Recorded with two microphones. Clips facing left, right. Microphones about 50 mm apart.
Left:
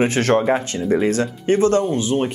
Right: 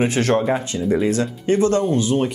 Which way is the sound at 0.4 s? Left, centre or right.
Left.